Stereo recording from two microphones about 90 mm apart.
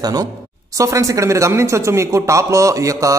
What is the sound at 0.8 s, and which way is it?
Speech, 35° right (ahead or behind).